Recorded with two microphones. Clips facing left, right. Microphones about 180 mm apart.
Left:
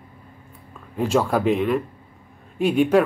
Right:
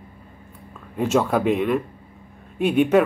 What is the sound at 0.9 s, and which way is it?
Speech, centre (ahead or behind).